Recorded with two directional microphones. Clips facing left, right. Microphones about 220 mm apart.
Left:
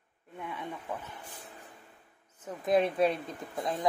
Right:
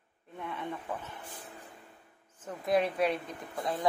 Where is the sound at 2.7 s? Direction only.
25° left (ahead or behind).